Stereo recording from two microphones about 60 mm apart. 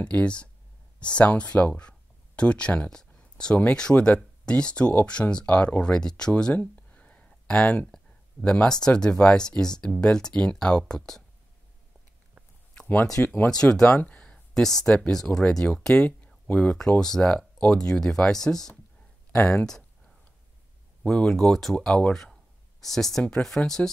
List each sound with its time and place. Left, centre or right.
0.0 s speech: centre
6.3 s a sound: left
8.4 s speech: centre
13.2 s speech: left
13.5 s speech: centre
15.9 s speech: left
21.0 s speech: centre